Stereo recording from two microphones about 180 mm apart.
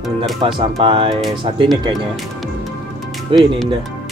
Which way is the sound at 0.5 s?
30° right (ahead or behind).